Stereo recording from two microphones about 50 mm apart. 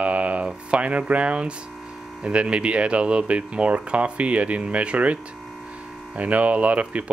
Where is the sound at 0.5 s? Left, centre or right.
Right.